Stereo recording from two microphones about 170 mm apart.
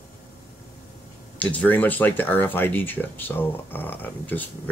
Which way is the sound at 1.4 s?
10° left (ahead or behind).